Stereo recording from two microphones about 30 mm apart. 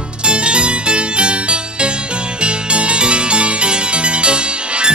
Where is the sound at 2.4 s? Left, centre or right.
Right.